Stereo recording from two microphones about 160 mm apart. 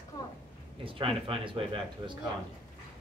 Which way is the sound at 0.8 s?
35° right (ahead or behind).